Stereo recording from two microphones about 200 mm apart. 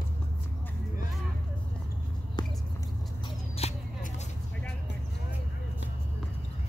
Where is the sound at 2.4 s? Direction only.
20° left (ahead or behind).